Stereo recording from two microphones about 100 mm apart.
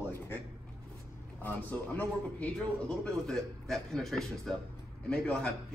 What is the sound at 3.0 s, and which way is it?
Speech, 5° left (ahead or behind).